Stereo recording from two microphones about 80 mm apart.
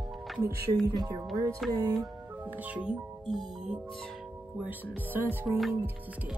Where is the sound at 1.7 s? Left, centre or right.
Right.